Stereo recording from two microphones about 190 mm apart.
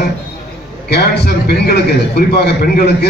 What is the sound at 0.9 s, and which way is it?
A man's voice, 60° left (ahead or behind).